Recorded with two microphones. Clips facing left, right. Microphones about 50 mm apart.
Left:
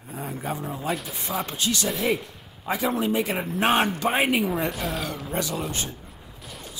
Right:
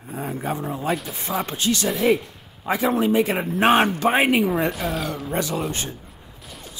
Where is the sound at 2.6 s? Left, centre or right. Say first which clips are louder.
Right 4 dB; right.